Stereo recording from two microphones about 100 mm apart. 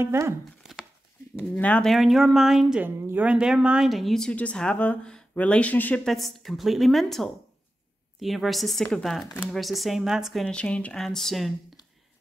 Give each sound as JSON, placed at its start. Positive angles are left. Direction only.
{"t": 0.0, "sound": "speech", "side_deg": -25}
{"t": 1.5, "sound": "speech", "side_deg": 10}
{"t": 1.9, "sound": "speech", "side_deg": 0}
{"t": 2.8, "sound": "speech", "side_deg": -15}
{"t": 6.0, "sound": "speech", "side_deg": 0}
{"t": 10.4, "sound": "speech", "side_deg": 10}